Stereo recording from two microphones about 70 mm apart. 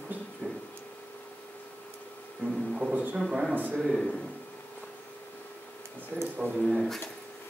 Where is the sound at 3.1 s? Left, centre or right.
Centre.